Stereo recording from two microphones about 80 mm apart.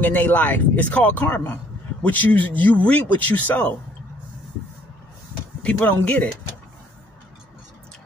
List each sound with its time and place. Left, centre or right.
0.0 s speech: left
5.6 s speech: centre